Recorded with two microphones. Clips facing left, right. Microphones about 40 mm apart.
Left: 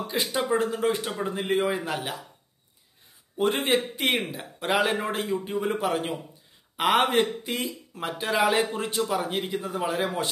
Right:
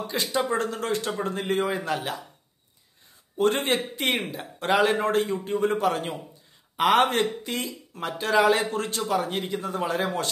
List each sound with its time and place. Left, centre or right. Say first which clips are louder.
0.0 s a man's voice: right 1 dB; centre
3.3 s a man's voice: right 1 dB; centre